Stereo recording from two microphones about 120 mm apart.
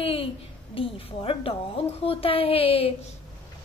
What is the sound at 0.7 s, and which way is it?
A woman's voice, 50° left (ahead or behind).